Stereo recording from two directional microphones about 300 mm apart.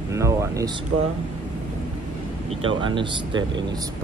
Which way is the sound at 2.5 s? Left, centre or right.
Centre.